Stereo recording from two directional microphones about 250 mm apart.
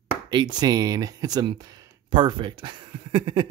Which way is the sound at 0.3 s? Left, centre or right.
Centre.